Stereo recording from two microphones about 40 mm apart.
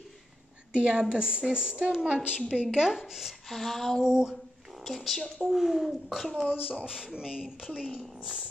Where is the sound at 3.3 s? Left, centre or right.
Centre.